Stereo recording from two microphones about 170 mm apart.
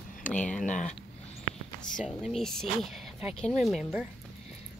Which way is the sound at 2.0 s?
Centre (ahead or behind).